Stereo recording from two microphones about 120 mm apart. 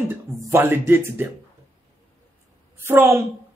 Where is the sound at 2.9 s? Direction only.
20° right (ahead or behind).